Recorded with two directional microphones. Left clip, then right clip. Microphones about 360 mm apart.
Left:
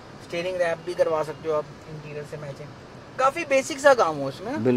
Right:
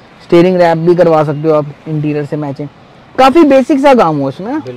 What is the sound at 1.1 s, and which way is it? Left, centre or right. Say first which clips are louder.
Speech: right 16 dB; right.